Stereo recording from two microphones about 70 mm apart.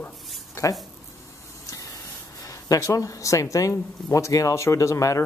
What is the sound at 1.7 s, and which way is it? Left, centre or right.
Spray, left.